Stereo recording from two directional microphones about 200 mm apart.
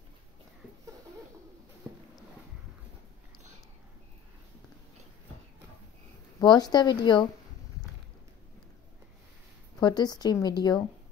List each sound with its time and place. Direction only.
1.8 s a sound: 10° right (ahead or behind)
6.4 s a woman's voice: 20° left (ahead or behind)
9.8 s a woman's voice: 20° left (ahead or behind)